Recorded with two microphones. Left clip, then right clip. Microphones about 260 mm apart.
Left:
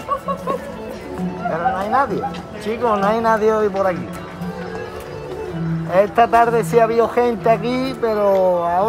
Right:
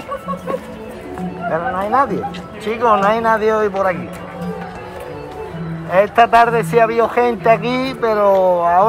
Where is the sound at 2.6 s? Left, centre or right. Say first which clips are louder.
Right 4 dB; centre.